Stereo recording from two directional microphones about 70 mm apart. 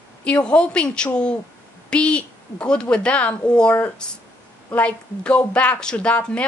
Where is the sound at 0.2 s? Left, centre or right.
Centre.